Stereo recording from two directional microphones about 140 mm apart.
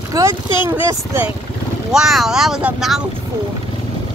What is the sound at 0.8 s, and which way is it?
Speech, 15° right (ahead or behind).